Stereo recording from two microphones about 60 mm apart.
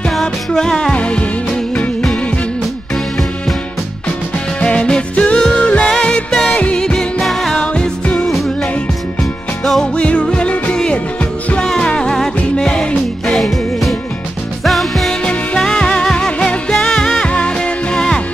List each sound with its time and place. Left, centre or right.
0.1 s music: centre
4.6 s music: centre
7.6 s music: centre
9.9 s music: centre
13.3 s music: centre
15.2 s music: centre